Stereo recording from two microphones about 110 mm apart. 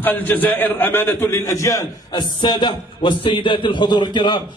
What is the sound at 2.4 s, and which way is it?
A man's voice, 45° left (ahead or behind).